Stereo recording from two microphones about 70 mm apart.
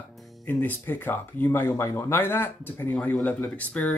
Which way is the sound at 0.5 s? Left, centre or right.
Left.